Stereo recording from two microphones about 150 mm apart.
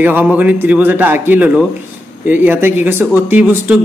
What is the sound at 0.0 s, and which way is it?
Speech, 10° right (ahead or behind).